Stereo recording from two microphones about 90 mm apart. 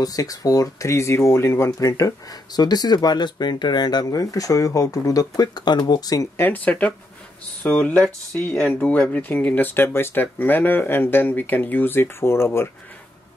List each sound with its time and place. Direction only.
0.0 s speech: 45° left (ahead or behind)
6.3 s speech: 20° left (ahead or behind)